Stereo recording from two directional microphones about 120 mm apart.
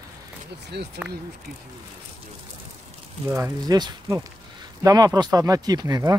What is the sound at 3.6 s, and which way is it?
Speech, 30° right (ahead or behind).